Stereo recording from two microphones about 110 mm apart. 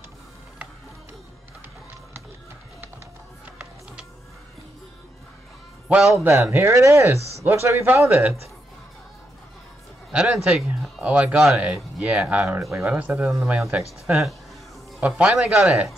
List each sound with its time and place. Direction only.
6.1 s speech: 25° right (ahead or behind)
10.1 s a man's voice: 5° right (ahead or behind)
13.4 s speech: 5° right (ahead or behind)
14.1 s a man's voice: 15° right (ahead or behind)